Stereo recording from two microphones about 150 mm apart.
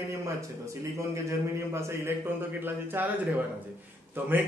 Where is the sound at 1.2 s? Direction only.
15° right (ahead or behind).